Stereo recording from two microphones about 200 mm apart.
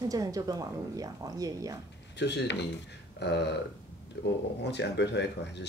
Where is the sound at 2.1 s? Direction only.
60° left (ahead or behind).